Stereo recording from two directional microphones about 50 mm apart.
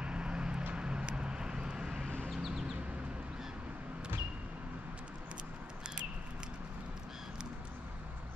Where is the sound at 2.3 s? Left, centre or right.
Centre.